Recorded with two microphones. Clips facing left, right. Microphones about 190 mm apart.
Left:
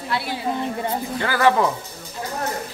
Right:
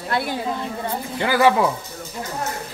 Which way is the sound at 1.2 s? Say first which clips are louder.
Right 2 dB; 15° right (ahead or behind).